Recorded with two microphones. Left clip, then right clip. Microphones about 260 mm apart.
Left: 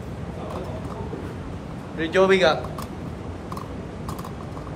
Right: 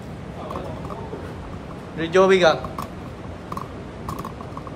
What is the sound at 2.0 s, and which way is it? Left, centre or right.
Speech, right.